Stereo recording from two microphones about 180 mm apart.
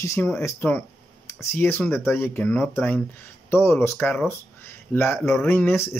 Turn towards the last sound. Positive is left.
turn(degrees=15)  # may be behind; listen again after turning